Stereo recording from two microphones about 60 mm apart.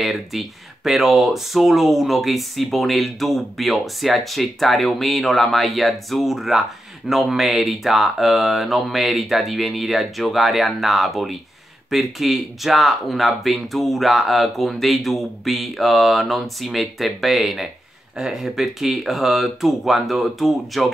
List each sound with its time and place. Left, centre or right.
0.0 s speech: centre